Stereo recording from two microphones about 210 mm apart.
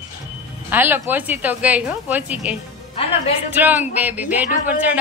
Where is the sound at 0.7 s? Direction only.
10° right (ahead or behind).